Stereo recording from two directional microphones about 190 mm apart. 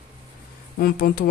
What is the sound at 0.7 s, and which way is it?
Speech, 50° left (ahead or behind).